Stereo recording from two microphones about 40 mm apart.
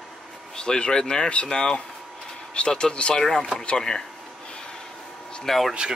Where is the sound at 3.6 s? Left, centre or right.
Centre.